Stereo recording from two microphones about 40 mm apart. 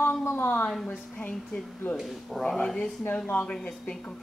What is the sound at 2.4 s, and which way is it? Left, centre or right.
Speech, centre.